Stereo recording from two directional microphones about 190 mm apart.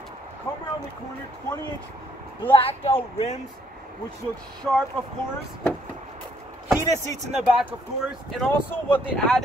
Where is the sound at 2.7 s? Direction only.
30° left (ahead or behind).